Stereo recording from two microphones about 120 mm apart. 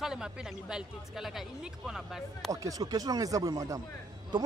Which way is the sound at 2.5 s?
30° right (ahead or behind).